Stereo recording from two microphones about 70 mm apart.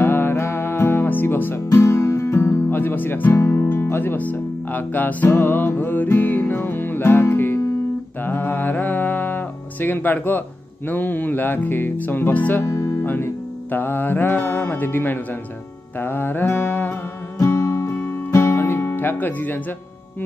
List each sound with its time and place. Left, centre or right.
0.0 s music: left
3.3 s speech: left
8.2 s music: left
12.6 s music: left
17.4 s music: left